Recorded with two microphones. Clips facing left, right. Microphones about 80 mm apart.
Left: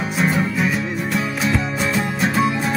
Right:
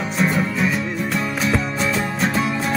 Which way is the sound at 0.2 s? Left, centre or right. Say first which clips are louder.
Even; centre.